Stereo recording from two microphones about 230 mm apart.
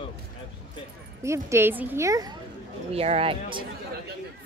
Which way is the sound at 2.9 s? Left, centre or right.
Right.